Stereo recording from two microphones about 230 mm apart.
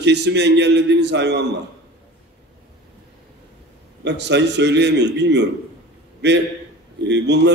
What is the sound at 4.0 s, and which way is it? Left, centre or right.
A man's voice, right.